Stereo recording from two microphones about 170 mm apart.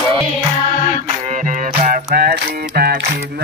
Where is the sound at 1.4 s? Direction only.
50° right (ahead or behind).